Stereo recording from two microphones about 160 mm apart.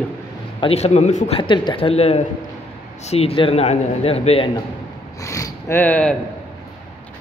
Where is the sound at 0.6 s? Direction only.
40° left (ahead or behind).